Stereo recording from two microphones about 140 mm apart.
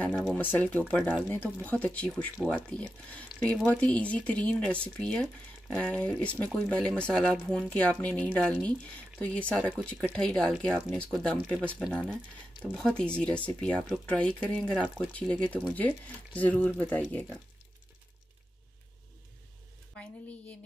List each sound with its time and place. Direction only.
0.1 s speech: 5° right (ahead or behind)
0.4 s speech: 10° left (ahead or behind)